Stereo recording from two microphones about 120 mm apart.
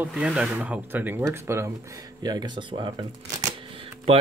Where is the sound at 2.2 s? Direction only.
35° right (ahead or behind).